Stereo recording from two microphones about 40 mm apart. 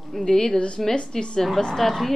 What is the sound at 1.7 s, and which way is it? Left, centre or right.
Speech, centre.